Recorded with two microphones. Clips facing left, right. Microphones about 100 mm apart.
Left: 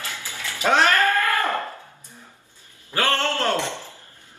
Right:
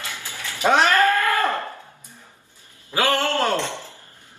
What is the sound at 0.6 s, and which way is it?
Cat, 15° right (ahead or behind).